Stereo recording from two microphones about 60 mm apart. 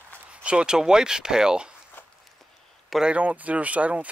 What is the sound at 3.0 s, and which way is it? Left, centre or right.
Speech, centre.